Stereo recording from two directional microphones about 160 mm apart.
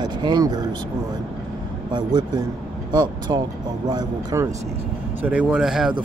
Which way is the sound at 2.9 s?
25° right (ahead or behind).